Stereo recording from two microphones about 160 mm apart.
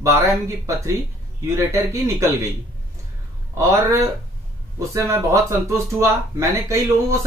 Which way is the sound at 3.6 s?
20° right (ahead or behind).